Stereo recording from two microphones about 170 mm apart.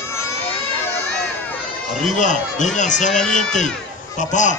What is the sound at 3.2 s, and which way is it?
Speech, 5° left (ahead or behind).